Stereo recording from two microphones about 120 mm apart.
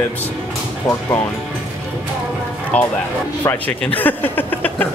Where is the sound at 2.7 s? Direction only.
10° left (ahead or behind).